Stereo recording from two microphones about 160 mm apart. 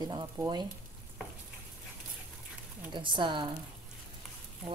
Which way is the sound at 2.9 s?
30° right (ahead or behind).